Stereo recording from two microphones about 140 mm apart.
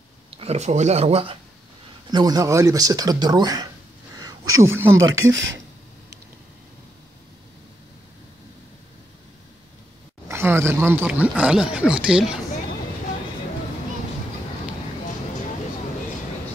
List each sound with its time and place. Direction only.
0.4 s speech: 50° right (ahead or behind)
2.0 s speech: 30° right (ahead or behind)
10.2 s speech: 20° right (ahead or behind)